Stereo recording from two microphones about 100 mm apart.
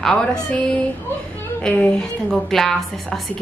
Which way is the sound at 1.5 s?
10° left (ahead or behind).